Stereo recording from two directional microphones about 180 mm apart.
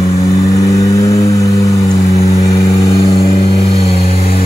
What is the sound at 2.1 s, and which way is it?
Vehicle, 35° left (ahead or behind).